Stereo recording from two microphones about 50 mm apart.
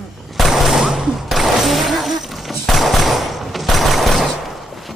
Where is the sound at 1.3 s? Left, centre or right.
Centre.